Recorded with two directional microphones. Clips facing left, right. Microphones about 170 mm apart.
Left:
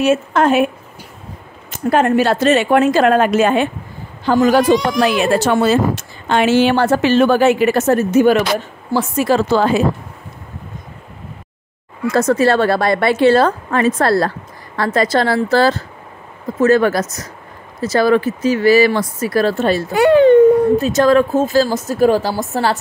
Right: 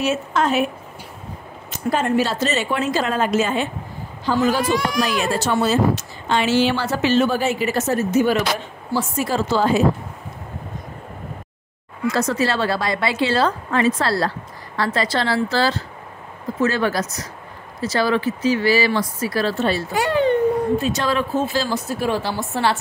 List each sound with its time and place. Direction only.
0.0 s a woman's voice: 55° left (ahead or behind)
1.7 s a woman's voice: 60° left (ahead or behind)
4.3 s a woman's voice: 75° left (ahead or behind)
5.0 s a woman's voice: 65° left (ahead or behind)
8.9 s a woman's voice: 70° left (ahead or behind)
12.1 s speech: 50° left (ahead or behind)
20.7 s speech: 45° left (ahead or behind)